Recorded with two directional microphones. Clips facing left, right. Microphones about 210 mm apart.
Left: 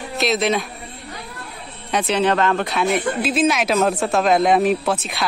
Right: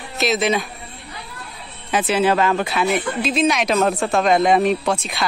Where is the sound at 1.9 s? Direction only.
5° right (ahead or behind).